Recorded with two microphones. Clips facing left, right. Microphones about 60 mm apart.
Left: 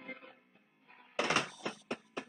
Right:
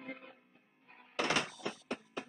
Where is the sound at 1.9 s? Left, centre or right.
Centre.